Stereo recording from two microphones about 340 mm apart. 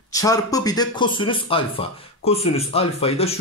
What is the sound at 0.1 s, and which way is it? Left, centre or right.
Speech, centre.